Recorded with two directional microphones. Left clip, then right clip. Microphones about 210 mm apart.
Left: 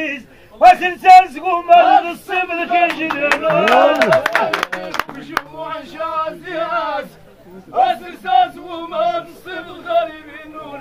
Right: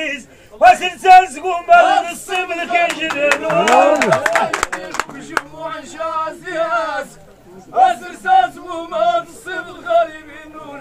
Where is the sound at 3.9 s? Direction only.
35° left (ahead or behind).